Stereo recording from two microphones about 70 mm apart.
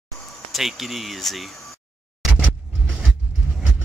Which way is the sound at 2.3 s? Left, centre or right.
Centre.